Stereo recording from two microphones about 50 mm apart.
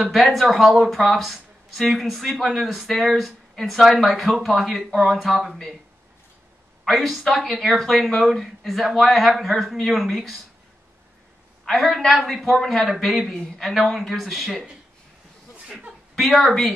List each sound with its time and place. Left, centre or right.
0.1 s speech: centre
6.8 s speech: centre
11.6 s speech: centre
13.3 s speech: centre
15.6 s speech: centre
16.2 s speech: centre